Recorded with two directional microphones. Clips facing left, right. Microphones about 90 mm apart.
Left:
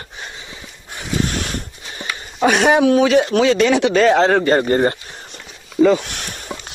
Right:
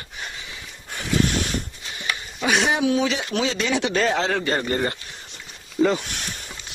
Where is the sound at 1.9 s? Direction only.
50° left (ahead or behind); by 4.2 s 90° left.